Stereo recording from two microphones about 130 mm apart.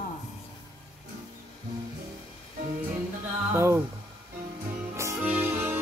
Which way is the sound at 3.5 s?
20° right (ahead or behind).